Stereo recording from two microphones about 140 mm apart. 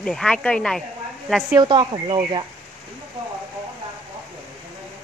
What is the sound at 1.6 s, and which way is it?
Speech, 35° right (ahead or behind).